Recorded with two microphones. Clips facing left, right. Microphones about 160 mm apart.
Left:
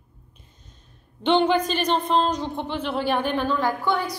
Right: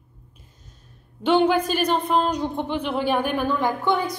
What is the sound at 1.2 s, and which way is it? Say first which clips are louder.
Speech: right 1 dB; 5° right (ahead or behind).